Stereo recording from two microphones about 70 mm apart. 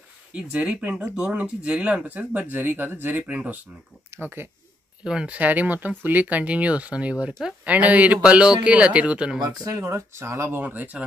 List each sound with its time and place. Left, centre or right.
0.3 s speech: centre
5.0 s speech: centre
9.4 s speech: right
9.8 s speech: right
10.6 s speech: right